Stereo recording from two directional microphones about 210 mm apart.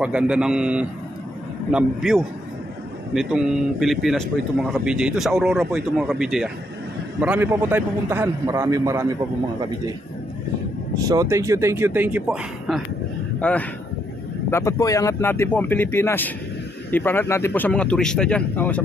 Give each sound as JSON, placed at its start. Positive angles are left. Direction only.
{"t": 0.0, "sound": "a man's voice", "side_deg": -5}
{"t": 11.0, "sound": "a man's voice", "side_deg": -15}